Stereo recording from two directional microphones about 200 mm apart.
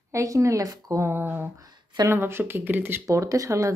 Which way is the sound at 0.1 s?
15° right (ahead or behind).